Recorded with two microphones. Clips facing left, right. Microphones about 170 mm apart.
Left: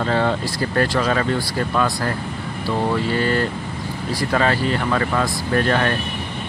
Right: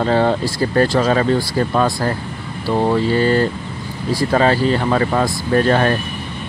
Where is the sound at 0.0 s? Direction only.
35° right (ahead or behind).